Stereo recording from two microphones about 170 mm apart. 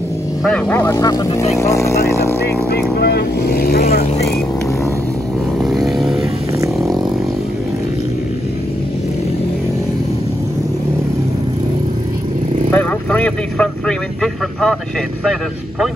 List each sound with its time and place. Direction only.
0.4 s speech: 5° left (ahead or behind)
3.0 s speech: 70° left (ahead or behind)
5.6 s vehicle: centre (ahead or behind)
12.7 s a man's voice: 10° left (ahead or behind)